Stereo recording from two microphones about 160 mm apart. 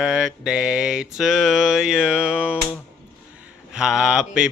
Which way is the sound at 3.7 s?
5° right (ahead or behind).